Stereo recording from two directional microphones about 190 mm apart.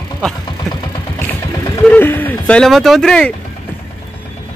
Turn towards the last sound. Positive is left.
turn(degrees=5)  # may be behind; listen again after turning